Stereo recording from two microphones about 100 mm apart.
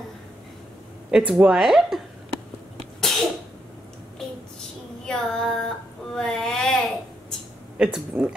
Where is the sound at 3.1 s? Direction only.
5° left (ahead or behind).